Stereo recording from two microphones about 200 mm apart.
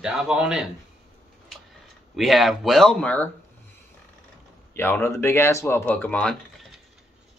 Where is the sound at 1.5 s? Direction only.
Centre (ahead or behind).